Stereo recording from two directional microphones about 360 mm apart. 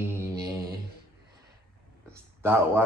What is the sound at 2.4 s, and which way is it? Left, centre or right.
Speech, centre.